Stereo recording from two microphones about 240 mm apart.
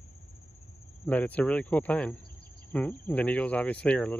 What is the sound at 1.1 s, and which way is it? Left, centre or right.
Speech, centre.